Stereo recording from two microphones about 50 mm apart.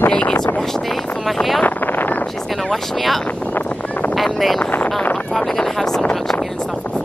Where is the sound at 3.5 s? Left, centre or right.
Left.